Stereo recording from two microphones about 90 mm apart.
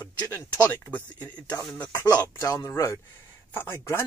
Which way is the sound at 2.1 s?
40° left (ahead or behind).